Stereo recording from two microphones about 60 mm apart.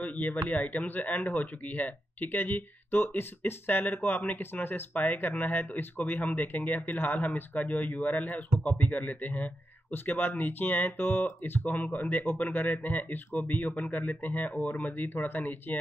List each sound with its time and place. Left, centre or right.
0.0 s speech: left